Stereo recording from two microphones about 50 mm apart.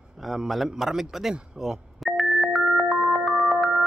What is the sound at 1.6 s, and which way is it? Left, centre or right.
Music, centre.